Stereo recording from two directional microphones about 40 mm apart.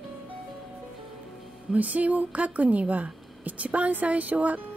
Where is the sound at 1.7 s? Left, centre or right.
Right.